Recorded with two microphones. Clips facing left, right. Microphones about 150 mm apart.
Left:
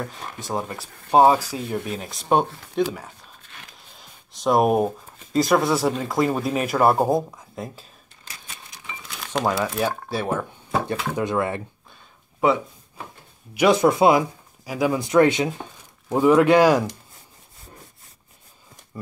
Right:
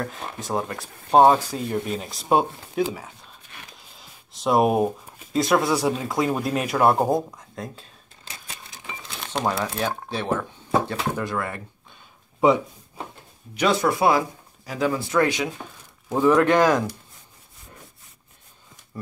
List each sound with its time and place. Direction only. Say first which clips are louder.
0.0 s speech: right 1 dB; centre (ahead or behind)
3.9 s a sound: even; centre (ahead or behind)
5.3 s speech: left 1 dB; centre (ahead or behind)
8.3 s crumpling: right 2 dB; 25° right (ahead or behind)
9.4 s speech: left 2 dB; 5° left (ahead or behind); by 11.6 s 20° left (ahead or behind)
12.4 s chopping: right 2 dB; 20° right (ahead or behind)
13.6 s speech: left 4 dB; 20° left (ahead or behind)
14.6 s speech: left 2 dB; 10° left (ahead or behind); by 15.6 s 25° left (ahead or behind)
16.1 s speech: left 2 dB; 10° left (ahead or behind)